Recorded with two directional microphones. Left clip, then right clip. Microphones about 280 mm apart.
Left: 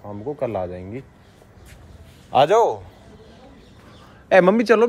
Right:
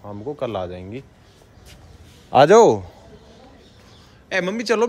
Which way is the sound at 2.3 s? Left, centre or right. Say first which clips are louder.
Right 4 dB; right.